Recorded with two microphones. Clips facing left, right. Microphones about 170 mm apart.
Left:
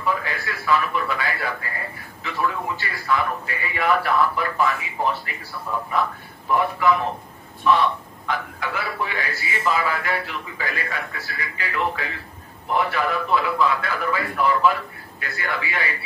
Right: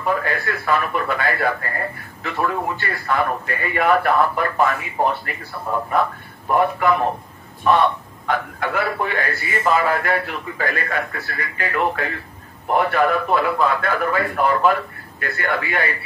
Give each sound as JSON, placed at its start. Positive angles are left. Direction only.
{"t": 0.0, "sound": "a man's voice", "side_deg": -55}